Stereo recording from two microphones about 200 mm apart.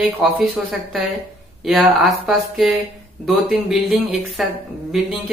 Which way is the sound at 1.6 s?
Centre (ahead or behind).